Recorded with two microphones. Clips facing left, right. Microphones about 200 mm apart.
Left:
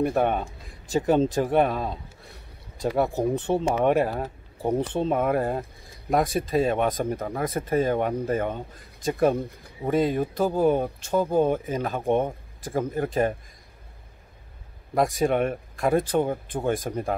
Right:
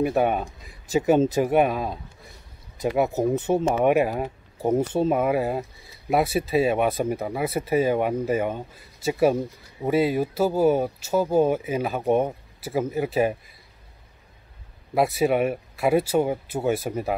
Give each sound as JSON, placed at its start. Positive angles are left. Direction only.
{"t": 0.0, "sound": "speech", "side_deg": -5}
{"t": 15.0, "sound": "speech", "side_deg": -5}